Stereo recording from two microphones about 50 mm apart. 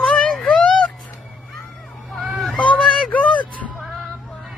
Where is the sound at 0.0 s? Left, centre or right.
Centre.